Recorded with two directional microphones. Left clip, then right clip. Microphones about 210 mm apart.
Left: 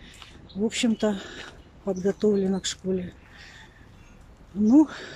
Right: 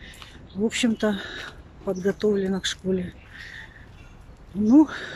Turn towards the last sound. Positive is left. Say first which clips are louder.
# right 2 dB
turn(degrees=5)  # may be behind; listen again after turning